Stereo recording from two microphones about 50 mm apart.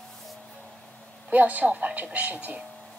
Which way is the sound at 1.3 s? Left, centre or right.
Right.